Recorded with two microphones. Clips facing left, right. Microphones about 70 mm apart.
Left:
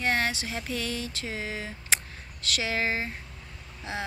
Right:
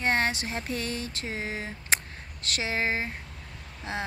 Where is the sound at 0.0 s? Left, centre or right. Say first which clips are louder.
Right 1 dB; right.